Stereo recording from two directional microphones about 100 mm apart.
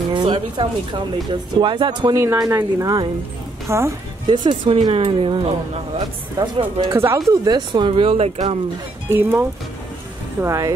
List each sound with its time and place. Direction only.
0.1 s speech: 55° right (ahead or behind)
2.1 s speech: 35° right (ahead or behind)
4.3 s speech: 55° right (ahead or behind)
4.9 s speech: 70° right (ahead or behind)
5.9 s speech: 50° right (ahead or behind)
6.9 s speech: 30° right (ahead or behind)
7.4 s speech: 50° right (ahead or behind); by 8.5 s 70° right (ahead or behind)
9.1 s speech: 20° right (ahead or behind)
10.4 s speech: 30° right (ahead or behind)